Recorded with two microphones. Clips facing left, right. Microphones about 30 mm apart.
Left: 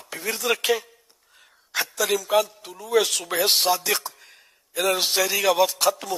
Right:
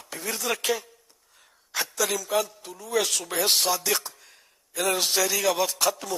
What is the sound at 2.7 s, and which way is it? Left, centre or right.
A man's voice, centre.